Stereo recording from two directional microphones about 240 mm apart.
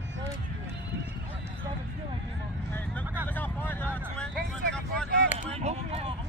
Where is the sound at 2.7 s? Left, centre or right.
Centre.